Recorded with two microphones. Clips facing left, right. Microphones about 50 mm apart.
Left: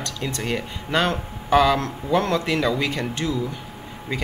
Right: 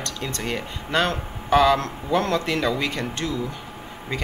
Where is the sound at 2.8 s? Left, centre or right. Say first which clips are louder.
Left 2 dB; centre.